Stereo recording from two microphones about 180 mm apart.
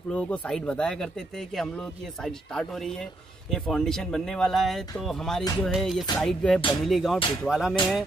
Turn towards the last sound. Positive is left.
turn(degrees=0)  # may be behind; listen again after turning